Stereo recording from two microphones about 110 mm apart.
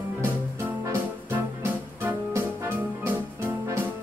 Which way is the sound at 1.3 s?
20° right (ahead or behind).